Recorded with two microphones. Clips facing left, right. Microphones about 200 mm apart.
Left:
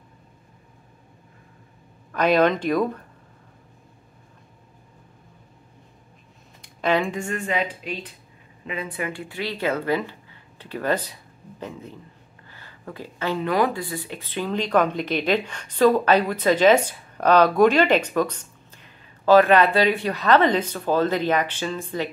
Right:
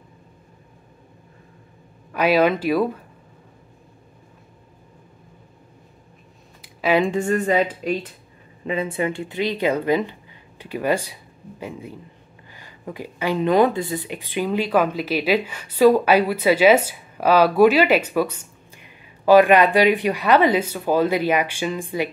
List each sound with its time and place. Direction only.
2.1 s speech: 5° right (ahead or behind)
6.6 s a sound: 5° right (ahead or behind)
7.0 s a woman's voice: 30° right (ahead or behind)
8.6 s speech: 25° right (ahead or behind)